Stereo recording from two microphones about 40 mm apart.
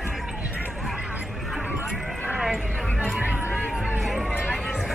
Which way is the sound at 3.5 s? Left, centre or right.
Left.